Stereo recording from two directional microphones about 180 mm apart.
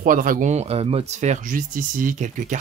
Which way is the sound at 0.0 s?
50° right (ahead or behind).